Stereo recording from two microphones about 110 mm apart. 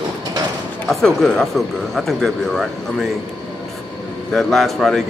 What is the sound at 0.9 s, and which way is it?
Speech, 5° left (ahead or behind).